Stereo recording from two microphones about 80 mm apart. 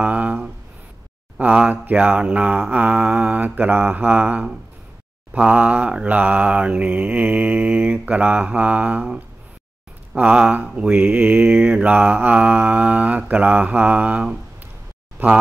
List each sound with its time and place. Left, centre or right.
0.0 s a sound: centre
1.4 s mantra: centre
15.2 s speech: right